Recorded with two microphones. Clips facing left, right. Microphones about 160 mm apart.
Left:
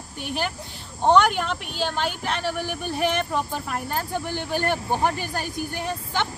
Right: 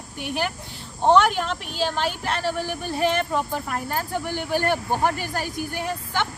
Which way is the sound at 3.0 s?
15° left (ahead or behind).